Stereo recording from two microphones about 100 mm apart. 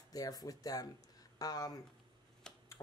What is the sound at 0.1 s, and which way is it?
Speech, 40° left (ahead or behind).